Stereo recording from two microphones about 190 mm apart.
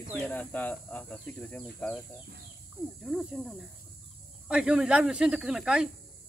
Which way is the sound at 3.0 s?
Centre (ahead or behind).